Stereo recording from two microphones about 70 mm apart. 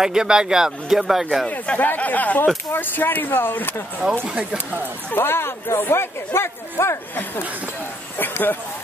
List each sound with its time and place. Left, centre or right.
0.0 s speech: centre
1.5 s speech: left
4.3 s speech: centre
5.1 s speech: left
8.2 s speech: left